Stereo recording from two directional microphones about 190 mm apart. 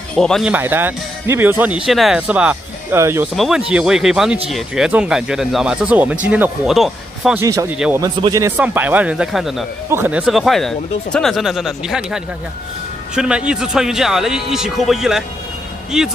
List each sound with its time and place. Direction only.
0.1 s speech: 5° left (ahead or behind)
0.5 s speech: 10° right (ahead or behind)
7.3 s speech: 15° right (ahead or behind)
7.7 s speech: 5° right (ahead or behind)
8.0 s speech: 20° right (ahead or behind); by 16.1 s 5° right (ahead or behind)